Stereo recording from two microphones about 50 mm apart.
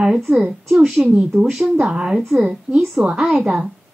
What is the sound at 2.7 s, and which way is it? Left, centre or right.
Speech, right.